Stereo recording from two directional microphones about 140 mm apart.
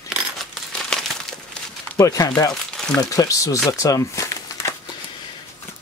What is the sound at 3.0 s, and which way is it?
Speech, 25° left (ahead or behind).